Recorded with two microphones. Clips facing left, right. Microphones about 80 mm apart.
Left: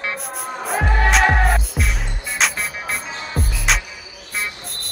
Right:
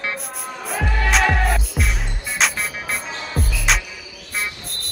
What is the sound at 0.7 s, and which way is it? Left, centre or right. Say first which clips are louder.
Music: left 4 dB; left.